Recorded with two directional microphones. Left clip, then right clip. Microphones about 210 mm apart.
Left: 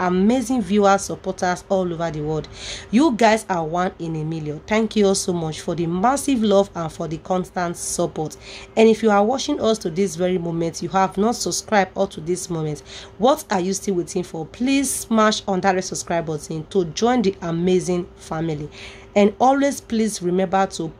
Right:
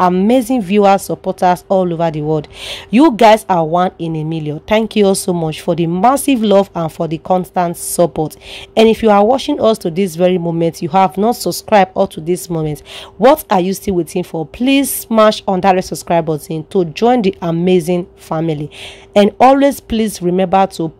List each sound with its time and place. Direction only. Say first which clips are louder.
0.1 s speech: right 7 dB; 30° right (ahead or behind)